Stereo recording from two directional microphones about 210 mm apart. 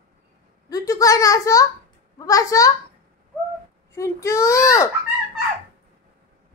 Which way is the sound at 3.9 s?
15° left (ahead or behind).